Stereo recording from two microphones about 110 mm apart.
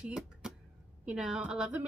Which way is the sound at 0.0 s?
5° right (ahead or behind).